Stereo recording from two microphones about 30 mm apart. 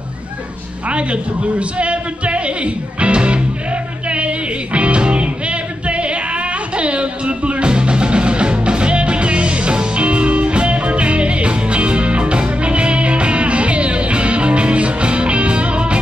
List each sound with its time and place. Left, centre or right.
0.8 s speech: right
4.1 s music: right